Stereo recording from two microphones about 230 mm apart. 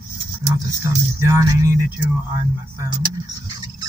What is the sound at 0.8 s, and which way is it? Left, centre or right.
Speech, centre.